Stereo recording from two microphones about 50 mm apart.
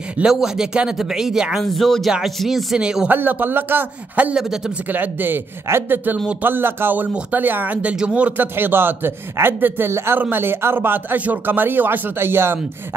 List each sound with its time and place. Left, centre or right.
0.2 s speech: centre
1.6 s speech: centre
2.8 s speech: centre
3.1 s a man's voice: right
4.4 s speech: centre
4.8 s a man's voice: right
5.7 s a man's voice: right
7.9 s speech: centre
8.3 s a man's voice: right
9.8 s a man's voice: right
10.3 s a man's voice: right